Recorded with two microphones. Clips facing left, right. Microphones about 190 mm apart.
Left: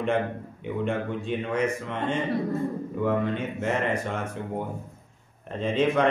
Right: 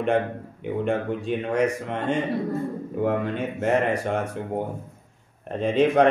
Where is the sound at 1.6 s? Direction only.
40° right (ahead or behind).